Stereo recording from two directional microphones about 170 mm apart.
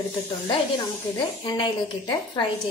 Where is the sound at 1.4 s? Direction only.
25° left (ahead or behind).